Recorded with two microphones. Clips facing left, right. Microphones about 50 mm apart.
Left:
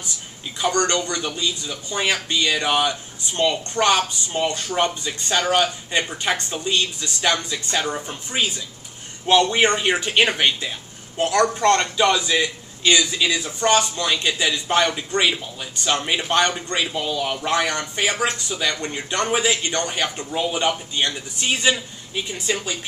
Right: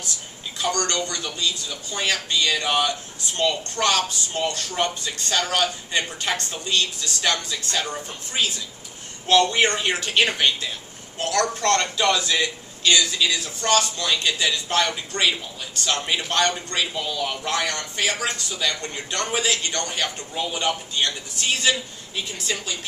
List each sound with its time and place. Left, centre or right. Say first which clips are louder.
0.6 s speech: left 4 dB; left